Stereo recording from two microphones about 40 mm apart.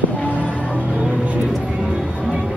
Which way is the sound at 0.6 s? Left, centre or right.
Right.